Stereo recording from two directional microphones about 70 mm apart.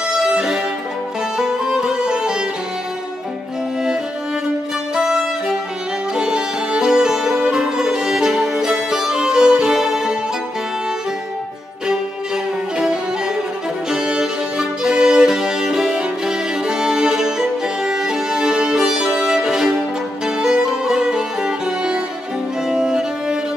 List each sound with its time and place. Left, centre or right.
0.1 s music: centre
4.9 s violin: centre
6.1 s music: centre
13.8 s music: centre